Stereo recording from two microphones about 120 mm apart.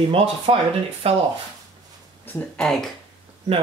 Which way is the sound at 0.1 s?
50° right (ahead or behind).